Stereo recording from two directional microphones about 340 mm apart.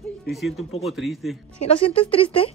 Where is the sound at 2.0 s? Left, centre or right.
Centre.